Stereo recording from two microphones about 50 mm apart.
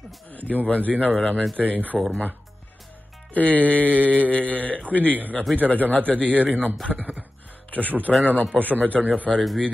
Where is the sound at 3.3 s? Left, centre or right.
Left.